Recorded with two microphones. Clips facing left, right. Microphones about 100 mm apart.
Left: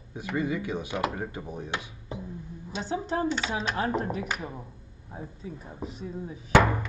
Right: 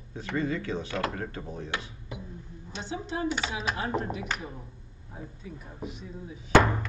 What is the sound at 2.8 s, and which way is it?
Chopping, 40° left (ahead or behind).